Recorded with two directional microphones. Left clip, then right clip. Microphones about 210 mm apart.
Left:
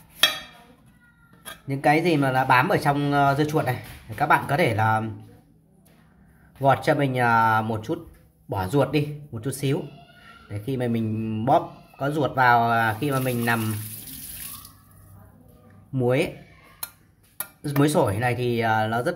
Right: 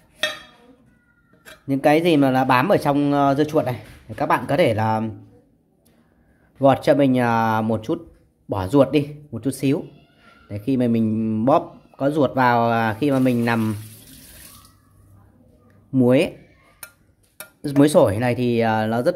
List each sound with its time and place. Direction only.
1.7 s speech: 40° right (ahead or behind)
6.6 s speech: 35° right (ahead or behind)
15.9 s speech: 40° right (ahead or behind)
17.6 s speech: 35° right (ahead or behind)